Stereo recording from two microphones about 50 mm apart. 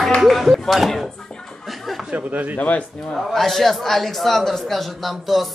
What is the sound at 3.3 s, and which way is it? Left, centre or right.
A man's voice, centre.